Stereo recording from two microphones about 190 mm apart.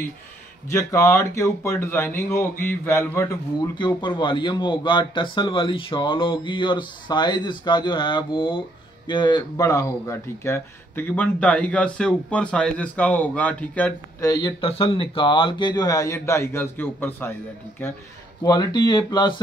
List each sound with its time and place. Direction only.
0.7 s speech: 15° left (ahead or behind)
14.6 s a man's voice: 30° left (ahead or behind)